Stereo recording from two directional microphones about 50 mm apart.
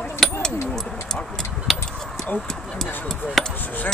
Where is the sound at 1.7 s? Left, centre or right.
Centre.